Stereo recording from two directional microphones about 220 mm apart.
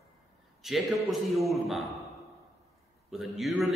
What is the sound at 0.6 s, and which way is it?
A man's voice, centre (ahead or behind).